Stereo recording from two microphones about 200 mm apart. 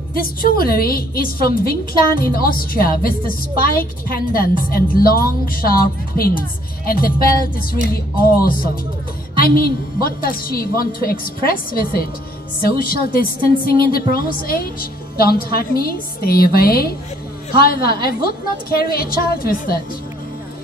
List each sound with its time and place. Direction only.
0.1 s a woman's voice: 45° left (ahead or behind)